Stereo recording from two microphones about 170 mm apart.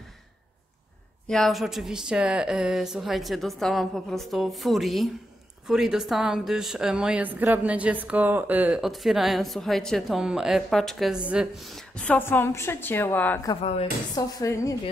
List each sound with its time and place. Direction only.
1.2 s a woman's voice: 5° left (ahead or behind); by 14.8 s 20° left (ahead or behind)